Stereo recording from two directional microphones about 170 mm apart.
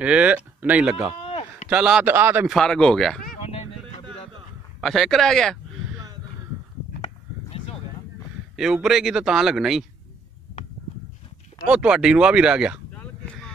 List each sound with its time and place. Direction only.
0.0 s speech: 5° right (ahead or behind)
1.2 s a sound: 35° left (ahead or behind)
1.7 s speech: 5° right (ahead or behind)
2.5 s a man's voice: 5° left (ahead or behind)
3.4 s a sound: 35° left (ahead or behind)
4.8 s a man's voice: centre (ahead or behind)
8.5 s a man's voice: 5° right (ahead or behind)
11.6 s a man's voice: 5° right (ahead or behind)
12.9 s a sound: 10° left (ahead or behind)